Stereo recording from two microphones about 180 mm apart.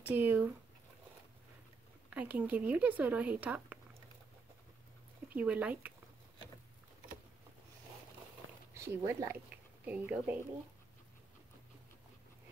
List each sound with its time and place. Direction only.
0.0 s speech: 10° right (ahead or behind)
2.0 s speech: 10° right (ahead or behind)
5.3 s speech: 10° right (ahead or behind)
8.9 s speech: 15° right (ahead or behind)